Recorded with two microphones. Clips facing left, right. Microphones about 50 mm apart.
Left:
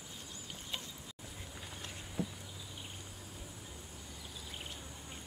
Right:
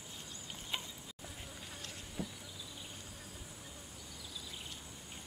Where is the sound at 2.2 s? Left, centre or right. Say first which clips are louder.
Left 4 dB; left.